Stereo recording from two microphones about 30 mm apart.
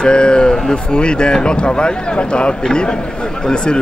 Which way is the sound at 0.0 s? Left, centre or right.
Left.